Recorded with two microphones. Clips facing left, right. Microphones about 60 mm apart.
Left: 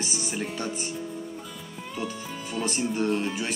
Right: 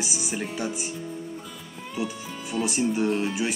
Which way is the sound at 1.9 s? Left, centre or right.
Centre.